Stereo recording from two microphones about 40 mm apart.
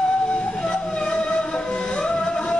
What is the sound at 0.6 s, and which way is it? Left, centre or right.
Music, centre.